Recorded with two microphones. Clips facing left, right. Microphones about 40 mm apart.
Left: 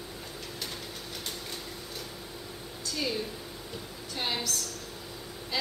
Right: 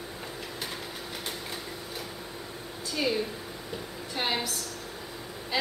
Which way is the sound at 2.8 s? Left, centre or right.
Centre.